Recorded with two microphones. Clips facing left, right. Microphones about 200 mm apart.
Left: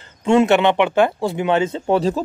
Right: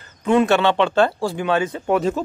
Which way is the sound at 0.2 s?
25° left (ahead or behind).